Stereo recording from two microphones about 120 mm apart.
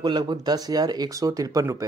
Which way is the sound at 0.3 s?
35° right (ahead or behind).